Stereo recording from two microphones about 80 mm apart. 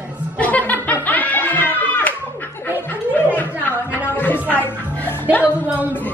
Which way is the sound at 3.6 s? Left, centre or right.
Left.